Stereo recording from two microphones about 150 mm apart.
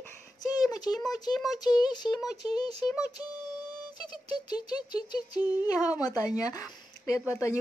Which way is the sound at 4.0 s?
30° left (ahead or behind).